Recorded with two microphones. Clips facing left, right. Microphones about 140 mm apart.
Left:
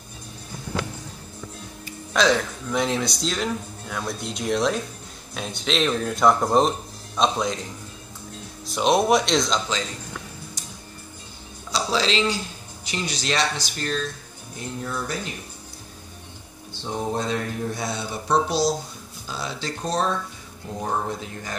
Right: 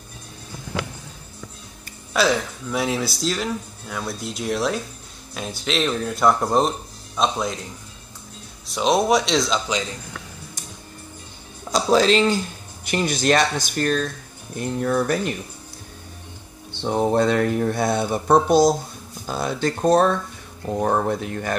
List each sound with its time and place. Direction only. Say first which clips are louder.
2.1 s speech: even; 5° right (ahead or behind)
8.6 s speech: even; centre (ahead or behind)
11.7 s speech: right 7 dB; 50° right (ahead or behind)
16.7 s speech: right 7 dB; 65° right (ahead or behind)